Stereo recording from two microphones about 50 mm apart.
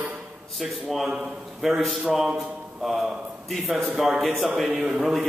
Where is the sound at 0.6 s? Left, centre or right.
Centre.